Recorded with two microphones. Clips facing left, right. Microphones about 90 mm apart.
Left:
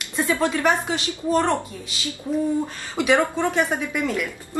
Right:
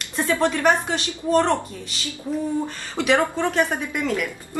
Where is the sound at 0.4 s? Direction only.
10° left (ahead or behind).